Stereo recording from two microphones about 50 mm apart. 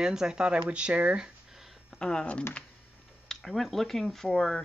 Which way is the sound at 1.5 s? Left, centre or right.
Centre.